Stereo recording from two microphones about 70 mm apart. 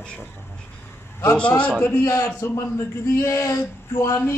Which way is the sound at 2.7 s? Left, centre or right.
Left.